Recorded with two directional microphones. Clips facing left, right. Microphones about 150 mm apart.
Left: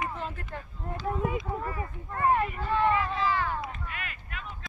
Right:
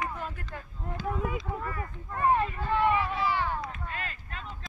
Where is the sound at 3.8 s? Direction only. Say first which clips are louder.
Right 2 dB; 30° right (ahead or behind).